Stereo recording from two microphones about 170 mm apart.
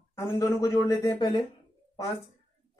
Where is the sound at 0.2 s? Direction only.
20° left (ahead or behind).